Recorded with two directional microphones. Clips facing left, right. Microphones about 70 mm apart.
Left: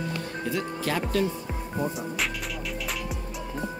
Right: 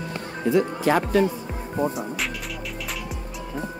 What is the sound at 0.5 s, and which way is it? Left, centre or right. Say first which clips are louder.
Speech: right 10 dB; right.